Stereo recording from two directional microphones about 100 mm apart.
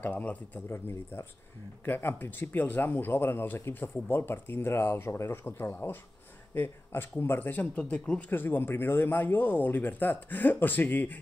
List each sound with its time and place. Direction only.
0.0 s speech: 15° left (ahead or behind)